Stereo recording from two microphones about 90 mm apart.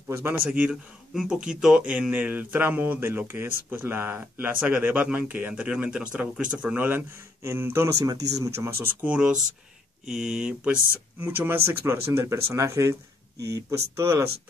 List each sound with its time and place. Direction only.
0.1 s speech: 25° right (ahead or behind)
0.5 s speech: 10° right (ahead or behind)
8.0 s speech: 40° right (ahead or behind)
9.0 s speech: 10° right (ahead or behind)
11.1 s speech: 25° right (ahead or behind)